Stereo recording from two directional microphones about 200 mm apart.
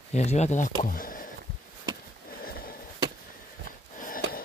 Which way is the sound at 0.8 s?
45° left (ahead or behind).